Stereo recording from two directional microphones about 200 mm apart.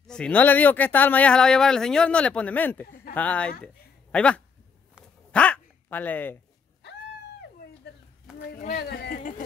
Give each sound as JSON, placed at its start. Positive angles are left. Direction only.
{"t": 0.0, "sound": "speech", "side_deg": 5}
{"t": 3.6, "sound": "a sound", "side_deg": 5}
{"t": 5.3, "sound": "speech", "side_deg": 5}
{"t": 8.5, "sound": "speech", "side_deg": 45}